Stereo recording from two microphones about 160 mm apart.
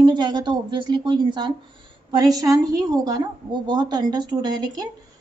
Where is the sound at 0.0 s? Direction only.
25° right (ahead or behind).